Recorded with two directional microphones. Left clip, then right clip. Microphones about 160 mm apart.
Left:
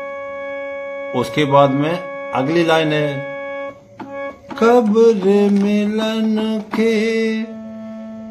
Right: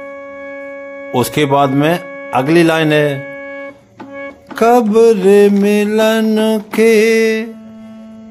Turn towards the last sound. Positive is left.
turn(degrees=-70)  # may be behind; listen again after turning